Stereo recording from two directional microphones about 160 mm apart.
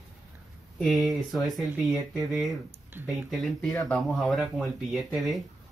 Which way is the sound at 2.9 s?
10° right (ahead or behind).